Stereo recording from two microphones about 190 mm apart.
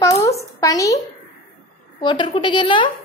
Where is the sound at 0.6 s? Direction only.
15° left (ahead or behind).